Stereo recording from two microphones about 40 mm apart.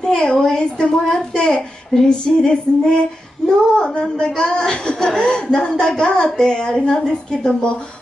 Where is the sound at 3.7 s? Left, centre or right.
Left.